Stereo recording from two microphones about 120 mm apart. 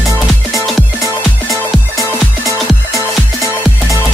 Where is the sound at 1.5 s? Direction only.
25° right (ahead or behind).